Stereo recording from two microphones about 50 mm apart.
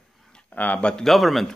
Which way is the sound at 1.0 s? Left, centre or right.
Centre.